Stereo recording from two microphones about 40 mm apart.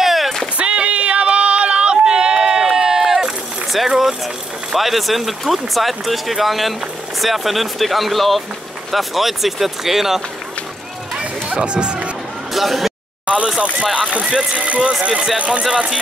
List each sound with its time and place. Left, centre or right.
0.0 s run: centre
0.6 s a sound: right
2.0 s run: right
4.7 s speech: centre
11.5 s speech: right
12.5 s speech: centre
13.6 s speech: right